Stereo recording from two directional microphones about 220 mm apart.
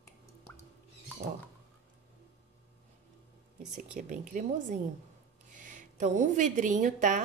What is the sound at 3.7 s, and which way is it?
A woman's voice, 35° right (ahead or behind).